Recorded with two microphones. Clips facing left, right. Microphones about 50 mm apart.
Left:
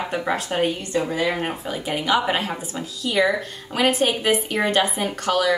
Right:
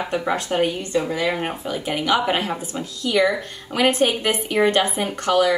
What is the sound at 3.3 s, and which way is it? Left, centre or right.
A woman's voice, right.